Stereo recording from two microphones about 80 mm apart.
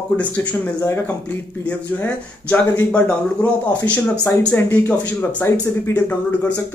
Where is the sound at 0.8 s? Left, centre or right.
Left.